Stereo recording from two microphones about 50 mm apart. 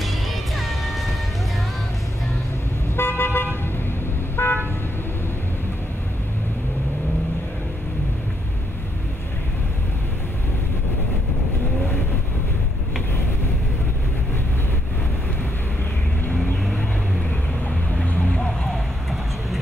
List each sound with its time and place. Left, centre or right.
0.6 s music: centre
3.0 s car: left
4.4 s vehicle: left
18.3 s a sound: centre